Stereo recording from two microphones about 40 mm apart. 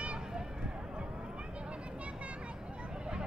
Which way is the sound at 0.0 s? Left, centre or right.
Right.